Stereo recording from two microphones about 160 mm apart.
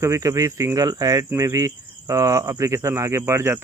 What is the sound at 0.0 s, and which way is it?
Speech, 20° right (ahead or behind).